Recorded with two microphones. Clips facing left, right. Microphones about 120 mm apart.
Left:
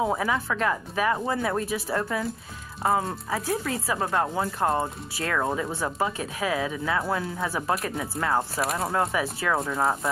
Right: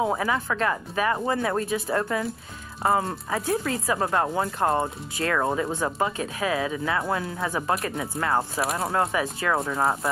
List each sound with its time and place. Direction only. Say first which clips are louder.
0.0 s speech: right 1 dB; centre (ahead or behind)
5.7 s speech: right 2 dB; 15° right (ahead or behind)
5.9 s speech: right 1 dB; centre (ahead or behind)